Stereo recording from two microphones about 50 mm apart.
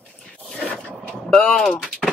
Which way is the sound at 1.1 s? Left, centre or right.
Centre.